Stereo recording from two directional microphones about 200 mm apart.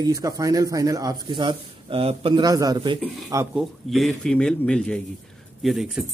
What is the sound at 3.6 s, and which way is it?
Speech, centre (ahead or behind).